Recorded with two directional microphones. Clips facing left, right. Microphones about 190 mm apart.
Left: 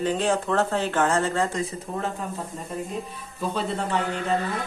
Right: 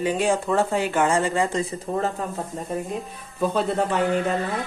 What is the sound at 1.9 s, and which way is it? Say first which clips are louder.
Speech: right 5 dB; 45° right (ahead or behind).